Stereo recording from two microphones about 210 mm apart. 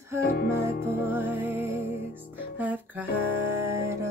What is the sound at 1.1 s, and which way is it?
Music, 10° right (ahead or behind).